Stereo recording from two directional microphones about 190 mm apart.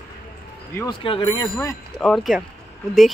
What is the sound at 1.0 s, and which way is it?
Speech, 25° left (ahead or behind).